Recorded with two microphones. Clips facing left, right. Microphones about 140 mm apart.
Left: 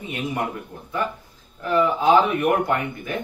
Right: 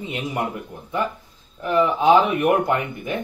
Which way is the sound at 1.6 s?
20° right (ahead or behind).